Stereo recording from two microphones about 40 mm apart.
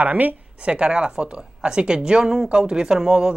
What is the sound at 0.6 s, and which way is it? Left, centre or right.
Speech, right.